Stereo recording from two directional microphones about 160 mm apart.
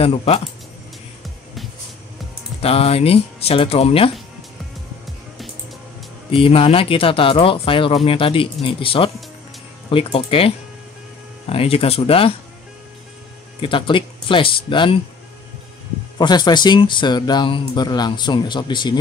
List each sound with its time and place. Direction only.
0.0 s speech: 40° left (ahead or behind)
2.6 s speech: 40° left (ahead or behind)
6.3 s speech: 35° left (ahead or behind)
13.6 s speech: 30° left (ahead or behind)
16.2 s speech: 25° left (ahead or behind)